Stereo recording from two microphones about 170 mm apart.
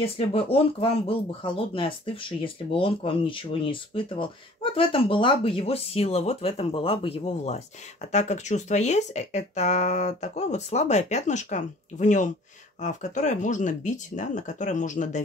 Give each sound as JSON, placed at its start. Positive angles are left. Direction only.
{"t": 0.0, "sound": "speech", "side_deg": 35}